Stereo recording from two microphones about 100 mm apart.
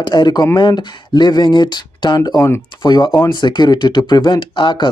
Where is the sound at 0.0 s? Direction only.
45° left (ahead or behind).